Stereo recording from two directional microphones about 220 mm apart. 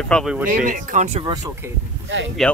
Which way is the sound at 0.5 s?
35° right (ahead or behind).